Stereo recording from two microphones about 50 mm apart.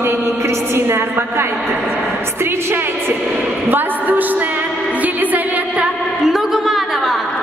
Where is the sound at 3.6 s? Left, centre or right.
Right.